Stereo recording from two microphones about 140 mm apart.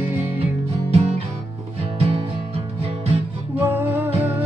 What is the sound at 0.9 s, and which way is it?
Music, 50° right (ahead or behind).